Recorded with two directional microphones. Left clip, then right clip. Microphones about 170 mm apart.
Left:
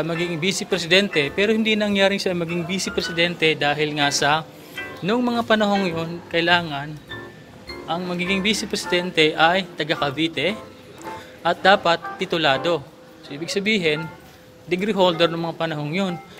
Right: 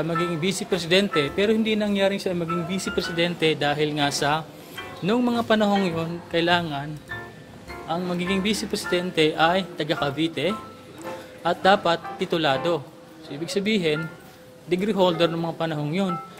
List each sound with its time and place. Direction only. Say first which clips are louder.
0.0 s a man's voice: left 1 dB; 5° right (ahead or behind)
3.0 s speech: left 3 dB; 20° right (ahead or behind)
7.9 s speech: left 2 dB; 25° right (ahead or behind)